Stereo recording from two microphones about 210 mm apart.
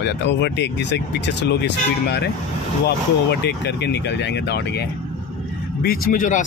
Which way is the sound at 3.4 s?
55° left (ahead or behind).